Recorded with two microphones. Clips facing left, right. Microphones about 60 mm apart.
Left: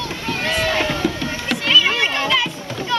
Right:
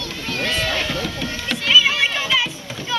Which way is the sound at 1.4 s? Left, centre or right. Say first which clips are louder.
Even; centre.